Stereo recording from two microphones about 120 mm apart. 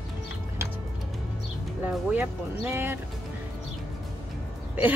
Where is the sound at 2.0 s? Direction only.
20° right (ahead or behind).